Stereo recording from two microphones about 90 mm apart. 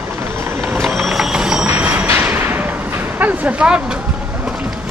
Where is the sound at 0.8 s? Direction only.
5° right (ahead or behind).